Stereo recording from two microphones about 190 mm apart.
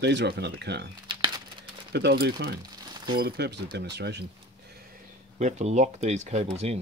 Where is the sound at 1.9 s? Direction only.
60° right (ahead or behind).